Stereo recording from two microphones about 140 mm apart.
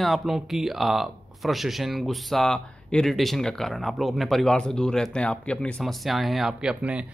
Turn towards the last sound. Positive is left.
turn(degrees=-10)  # may be behind; listen again after turning